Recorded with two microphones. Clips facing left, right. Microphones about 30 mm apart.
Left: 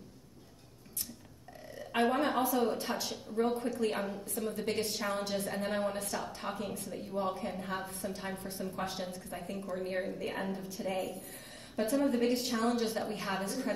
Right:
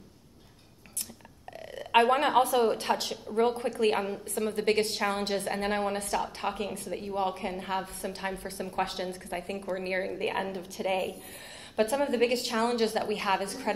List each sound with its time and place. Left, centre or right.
1.7 s a woman's voice: right
11.7 s a woman's voice: right